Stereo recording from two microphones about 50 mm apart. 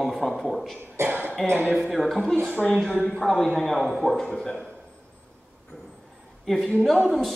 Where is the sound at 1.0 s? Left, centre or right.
Right.